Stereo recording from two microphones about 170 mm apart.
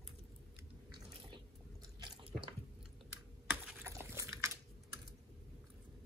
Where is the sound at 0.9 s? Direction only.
25° right (ahead or behind).